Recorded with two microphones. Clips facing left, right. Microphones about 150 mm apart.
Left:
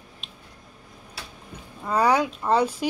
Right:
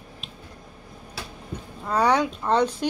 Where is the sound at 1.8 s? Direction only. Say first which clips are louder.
Even; 5° left (ahead or behind).